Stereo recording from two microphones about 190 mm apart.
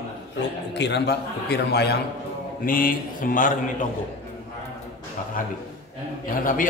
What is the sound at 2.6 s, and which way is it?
Speech, 45° left (ahead or behind).